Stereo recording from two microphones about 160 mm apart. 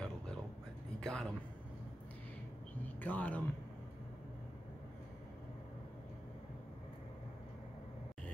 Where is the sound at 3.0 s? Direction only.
10° left (ahead or behind).